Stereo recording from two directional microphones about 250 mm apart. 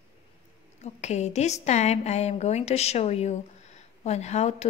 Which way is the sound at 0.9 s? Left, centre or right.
Left.